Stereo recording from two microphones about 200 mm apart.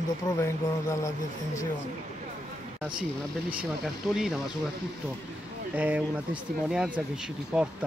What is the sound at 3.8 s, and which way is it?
Speech, centre (ahead or behind).